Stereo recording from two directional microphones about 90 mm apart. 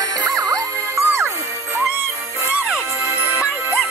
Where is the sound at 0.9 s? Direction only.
30° right (ahead or behind).